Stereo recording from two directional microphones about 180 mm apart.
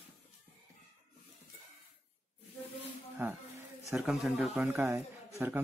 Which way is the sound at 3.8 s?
5° right (ahead or behind).